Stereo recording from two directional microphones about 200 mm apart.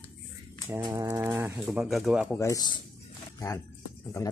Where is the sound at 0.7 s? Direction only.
15° right (ahead or behind).